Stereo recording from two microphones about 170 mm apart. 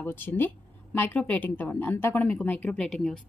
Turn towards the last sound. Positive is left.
turn(degrees=5)  # may be behind; listen again after turning